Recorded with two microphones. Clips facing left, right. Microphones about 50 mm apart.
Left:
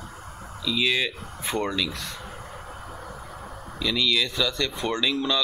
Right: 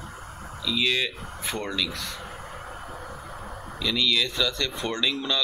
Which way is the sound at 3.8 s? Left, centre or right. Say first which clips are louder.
Left 1 dB; centre.